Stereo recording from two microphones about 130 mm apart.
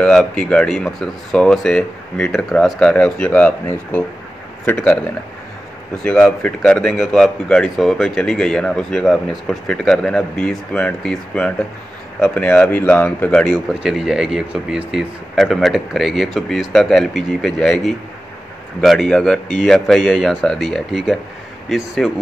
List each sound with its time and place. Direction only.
0.0 s speech: 5° left (ahead or behind)
6.0 s speech: 10° left (ahead or behind)